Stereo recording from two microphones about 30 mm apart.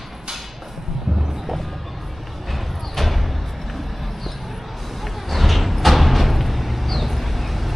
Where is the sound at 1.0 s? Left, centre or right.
Centre.